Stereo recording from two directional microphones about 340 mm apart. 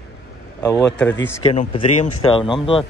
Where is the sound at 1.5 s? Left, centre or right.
Centre.